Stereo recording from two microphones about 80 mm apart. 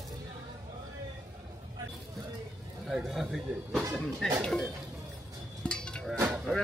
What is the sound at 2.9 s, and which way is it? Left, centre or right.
Speech, centre.